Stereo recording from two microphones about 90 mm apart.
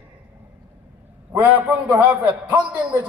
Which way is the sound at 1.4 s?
20° right (ahead or behind).